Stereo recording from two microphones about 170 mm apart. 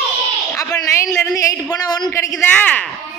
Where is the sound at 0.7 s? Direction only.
15° left (ahead or behind).